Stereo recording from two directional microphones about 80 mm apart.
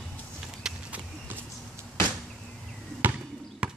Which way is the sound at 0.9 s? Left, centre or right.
Right.